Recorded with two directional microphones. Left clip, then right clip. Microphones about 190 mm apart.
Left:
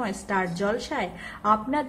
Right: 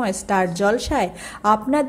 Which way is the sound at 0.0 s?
25° right (ahead or behind).